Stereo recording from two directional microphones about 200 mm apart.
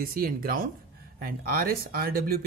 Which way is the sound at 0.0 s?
45° right (ahead or behind).